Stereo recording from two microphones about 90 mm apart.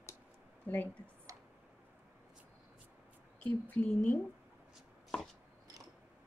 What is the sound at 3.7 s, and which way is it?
Speech, 15° left (ahead or behind).